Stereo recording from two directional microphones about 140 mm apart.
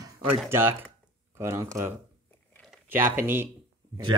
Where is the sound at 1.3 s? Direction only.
20° right (ahead or behind).